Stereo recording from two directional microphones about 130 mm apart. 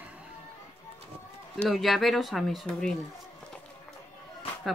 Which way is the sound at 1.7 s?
Centre (ahead or behind).